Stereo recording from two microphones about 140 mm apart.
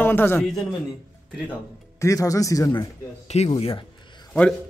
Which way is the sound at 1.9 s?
25° left (ahead or behind).